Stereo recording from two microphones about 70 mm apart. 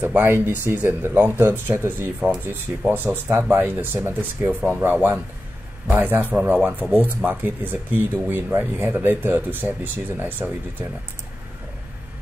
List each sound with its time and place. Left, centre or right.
0.0 s speech: right
2.1 s speech: centre
2.9 s speech: right